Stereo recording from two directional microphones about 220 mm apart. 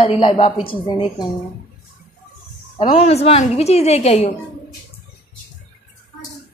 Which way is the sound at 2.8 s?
25° left (ahead or behind).